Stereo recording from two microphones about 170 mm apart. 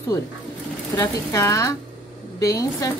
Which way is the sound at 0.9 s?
15° left (ahead or behind).